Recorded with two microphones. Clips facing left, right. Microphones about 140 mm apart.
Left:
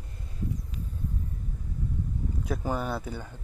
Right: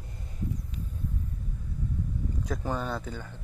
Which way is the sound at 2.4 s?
5° left (ahead or behind).